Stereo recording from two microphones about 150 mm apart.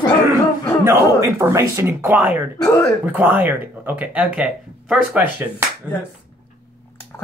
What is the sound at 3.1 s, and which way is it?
Speech, 10° right (ahead or behind).